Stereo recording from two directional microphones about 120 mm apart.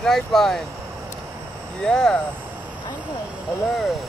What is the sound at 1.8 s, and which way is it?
Speech, 5° left (ahead or behind).